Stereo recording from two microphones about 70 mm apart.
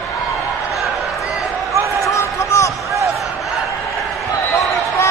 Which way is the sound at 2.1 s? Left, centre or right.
Left.